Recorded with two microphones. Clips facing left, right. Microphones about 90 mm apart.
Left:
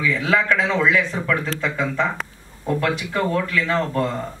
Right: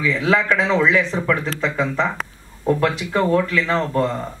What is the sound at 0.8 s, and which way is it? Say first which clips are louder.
Speech: right 2 dB; 25° right (ahead or behind).